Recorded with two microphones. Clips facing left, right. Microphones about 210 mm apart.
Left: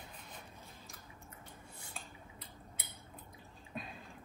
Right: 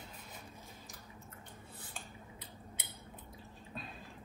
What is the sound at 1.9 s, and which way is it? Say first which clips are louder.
Scissors: even; centre (ahead or behind).